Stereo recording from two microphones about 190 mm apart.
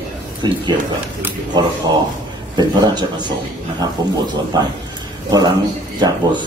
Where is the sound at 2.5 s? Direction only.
25° right (ahead or behind).